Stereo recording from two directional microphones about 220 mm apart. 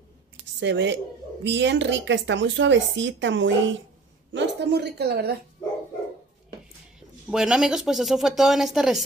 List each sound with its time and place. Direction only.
0.6 s a woman's voice: 55° right (ahead or behind)
7.2 s speech: 5° right (ahead or behind)